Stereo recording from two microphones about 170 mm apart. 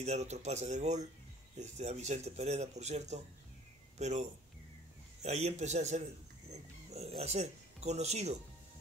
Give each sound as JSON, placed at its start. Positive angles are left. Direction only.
{"t": 0.0, "sound": "speech", "side_deg": -40}